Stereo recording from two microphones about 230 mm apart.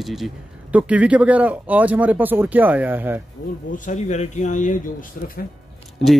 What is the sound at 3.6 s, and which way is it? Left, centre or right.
Speech, left.